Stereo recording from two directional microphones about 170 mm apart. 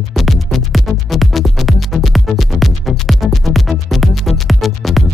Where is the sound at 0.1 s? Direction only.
Centre (ahead or behind).